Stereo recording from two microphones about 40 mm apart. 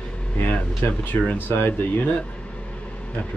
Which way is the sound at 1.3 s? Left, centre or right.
Left.